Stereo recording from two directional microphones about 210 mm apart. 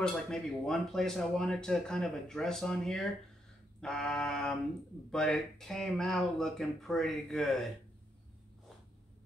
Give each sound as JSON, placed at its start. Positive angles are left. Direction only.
{"t": 0.0, "sound": "speech", "side_deg": 0}